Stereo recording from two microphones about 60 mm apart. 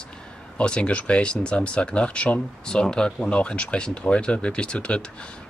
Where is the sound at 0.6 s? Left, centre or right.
Centre.